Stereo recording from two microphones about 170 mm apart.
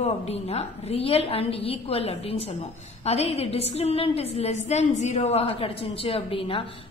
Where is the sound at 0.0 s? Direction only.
40° left (ahead or behind).